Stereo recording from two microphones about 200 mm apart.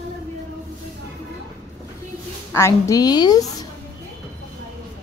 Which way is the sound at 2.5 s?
15° left (ahead or behind).